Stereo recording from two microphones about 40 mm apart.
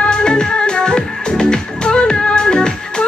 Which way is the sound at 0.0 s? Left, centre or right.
Left.